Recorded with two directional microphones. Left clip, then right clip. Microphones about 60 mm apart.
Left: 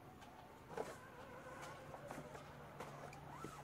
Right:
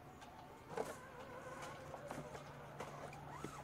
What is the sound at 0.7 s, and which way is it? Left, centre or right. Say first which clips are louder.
Vehicle: right 3 dB; centre.